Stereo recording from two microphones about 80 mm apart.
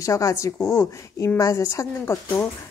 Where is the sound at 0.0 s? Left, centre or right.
Left.